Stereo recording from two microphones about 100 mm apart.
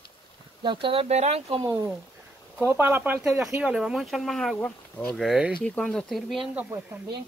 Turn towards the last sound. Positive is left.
turn(degrees=0)  # may be behind; listen again after turning